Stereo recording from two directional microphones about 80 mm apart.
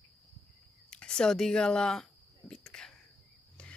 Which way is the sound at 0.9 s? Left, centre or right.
Centre.